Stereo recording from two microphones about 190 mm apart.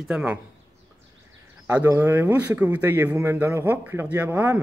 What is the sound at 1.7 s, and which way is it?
Speech, 10° right (ahead or behind).